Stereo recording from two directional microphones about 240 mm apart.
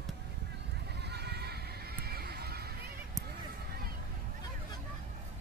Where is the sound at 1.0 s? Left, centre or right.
Right.